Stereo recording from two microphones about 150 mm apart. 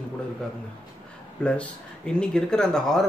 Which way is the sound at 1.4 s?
5° left (ahead or behind).